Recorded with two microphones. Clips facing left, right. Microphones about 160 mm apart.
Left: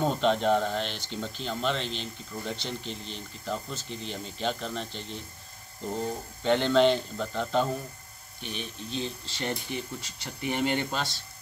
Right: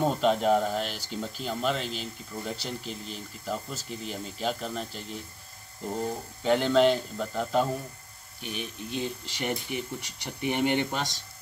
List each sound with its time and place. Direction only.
0.0 s speech: 5° right (ahead or behind)